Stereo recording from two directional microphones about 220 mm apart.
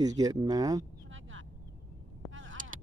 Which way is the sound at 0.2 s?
15° right (ahead or behind).